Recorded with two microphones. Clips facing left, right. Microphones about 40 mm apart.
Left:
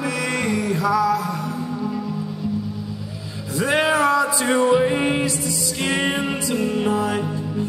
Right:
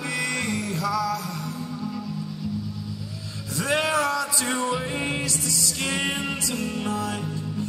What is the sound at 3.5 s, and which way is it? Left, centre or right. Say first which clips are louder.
Music: left 5 dB; centre.